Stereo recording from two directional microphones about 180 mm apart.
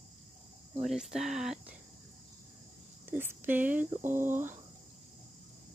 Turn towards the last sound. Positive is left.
turn(degrees=-10)  # may be behind; listen again after turning